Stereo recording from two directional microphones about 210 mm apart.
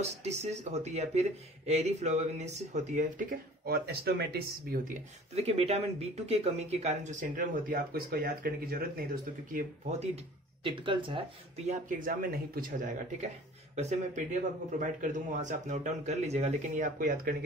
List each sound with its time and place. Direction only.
0.0 s speech: 30° right (ahead or behind)
5.3 s speech: 30° right (ahead or behind)
10.6 s speech: 25° right (ahead or behind); by 17.3 s 40° right (ahead or behind)